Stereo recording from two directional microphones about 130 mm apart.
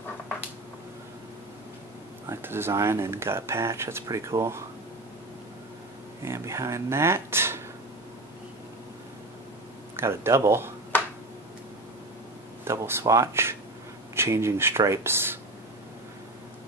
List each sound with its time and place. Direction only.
2.2 s speech: 20° right (ahead or behind)
6.2 s speech: 20° right (ahead or behind)
9.9 s speech: 20° right (ahead or behind)
12.6 s speech: 20° right (ahead or behind)